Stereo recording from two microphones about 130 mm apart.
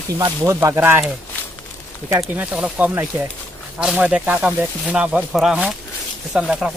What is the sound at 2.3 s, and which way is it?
A man's voice, 10° right (ahead or behind).